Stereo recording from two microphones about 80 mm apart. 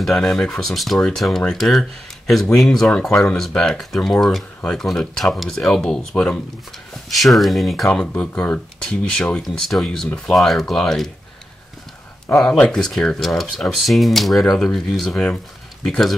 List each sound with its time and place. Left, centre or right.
0.0 s speech: centre
8.1 s speech: left
9.4 s speech: centre
12.4 s speech: centre